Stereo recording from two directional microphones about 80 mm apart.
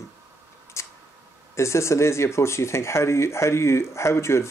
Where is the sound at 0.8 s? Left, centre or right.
Left.